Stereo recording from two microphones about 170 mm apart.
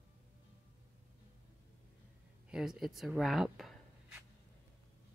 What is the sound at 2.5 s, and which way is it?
Speech, 5° right (ahead or behind).